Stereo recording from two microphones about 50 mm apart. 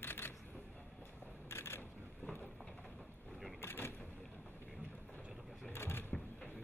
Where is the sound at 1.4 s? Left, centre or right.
Left.